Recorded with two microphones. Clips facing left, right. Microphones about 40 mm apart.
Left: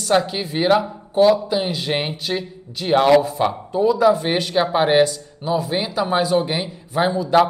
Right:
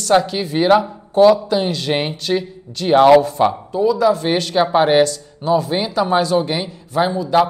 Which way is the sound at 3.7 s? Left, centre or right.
Left.